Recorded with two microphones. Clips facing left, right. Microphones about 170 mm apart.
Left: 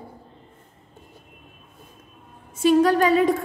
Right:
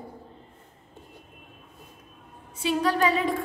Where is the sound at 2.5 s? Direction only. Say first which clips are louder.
Left 8 dB; 45° left (ahead or behind).